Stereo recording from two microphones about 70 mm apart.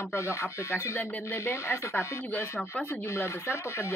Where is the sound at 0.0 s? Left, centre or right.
Left.